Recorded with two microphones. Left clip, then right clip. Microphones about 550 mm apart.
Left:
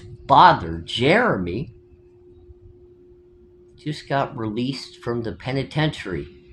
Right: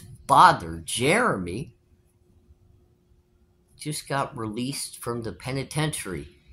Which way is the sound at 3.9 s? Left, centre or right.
Right.